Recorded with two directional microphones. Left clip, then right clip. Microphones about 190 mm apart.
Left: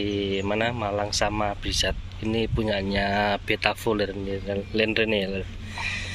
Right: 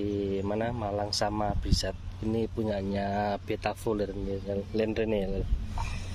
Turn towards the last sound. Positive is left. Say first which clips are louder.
# left 9 dB
turn(degrees=-5)  # may be behind; listen again after turning